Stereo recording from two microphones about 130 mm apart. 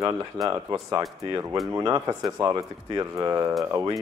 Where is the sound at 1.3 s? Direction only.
25° right (ahead or behind).